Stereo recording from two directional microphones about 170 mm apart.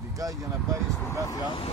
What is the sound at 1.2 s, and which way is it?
Speech, 20° left (ahead or behind).